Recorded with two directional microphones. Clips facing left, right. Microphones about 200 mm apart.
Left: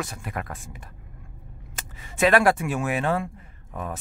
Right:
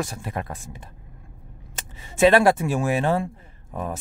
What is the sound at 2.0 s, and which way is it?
Speech, 25° right (ahead or behind).